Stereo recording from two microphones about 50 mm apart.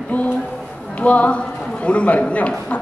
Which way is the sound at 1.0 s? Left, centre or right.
Left.